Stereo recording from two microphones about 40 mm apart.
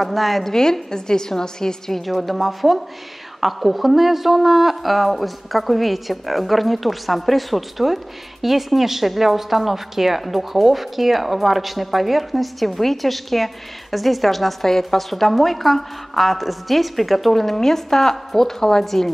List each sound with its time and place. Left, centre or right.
0.0 s speech: centre
0.5 s a woman's voice: centre